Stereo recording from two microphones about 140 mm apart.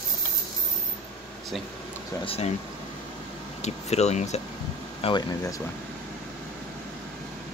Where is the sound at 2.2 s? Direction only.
45° left (ahead or behind).